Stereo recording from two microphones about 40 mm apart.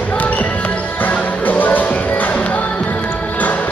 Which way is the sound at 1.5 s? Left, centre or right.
Left.